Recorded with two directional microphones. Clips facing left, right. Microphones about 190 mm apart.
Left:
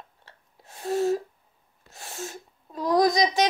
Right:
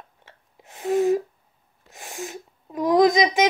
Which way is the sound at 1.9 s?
15° right (ahead or behind).